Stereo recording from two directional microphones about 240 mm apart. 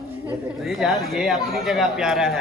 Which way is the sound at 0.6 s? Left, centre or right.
Centre.